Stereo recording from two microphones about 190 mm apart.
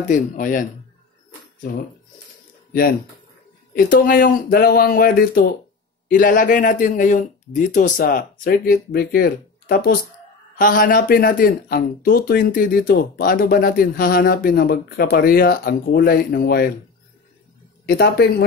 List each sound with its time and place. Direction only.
0.1 s speech: 45° left (ahead or behind)
3.7 s speech: 45° left (ahead or behind)
17.8 s speech: 55° left (ahead or behind)